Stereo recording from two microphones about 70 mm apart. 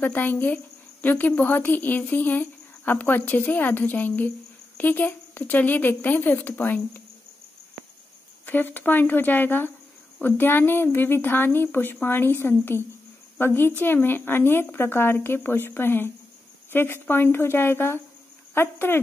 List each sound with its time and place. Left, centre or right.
0.0 s speech: left
8.5 s speech: left